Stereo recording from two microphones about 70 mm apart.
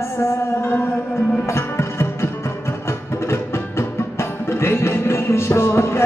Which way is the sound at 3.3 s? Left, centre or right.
Left.